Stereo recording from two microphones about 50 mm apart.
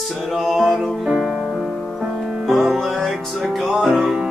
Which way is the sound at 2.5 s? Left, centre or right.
Centre.